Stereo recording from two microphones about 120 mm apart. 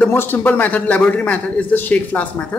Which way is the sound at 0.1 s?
15° left (ahead or behind).